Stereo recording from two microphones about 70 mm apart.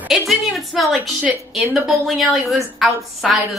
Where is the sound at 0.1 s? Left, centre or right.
Centre.